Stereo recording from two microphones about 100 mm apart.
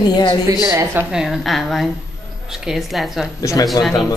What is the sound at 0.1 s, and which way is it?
Speech, 50° left (ahead or behind).